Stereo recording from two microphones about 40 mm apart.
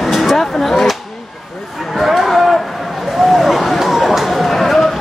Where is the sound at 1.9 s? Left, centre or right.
Centre.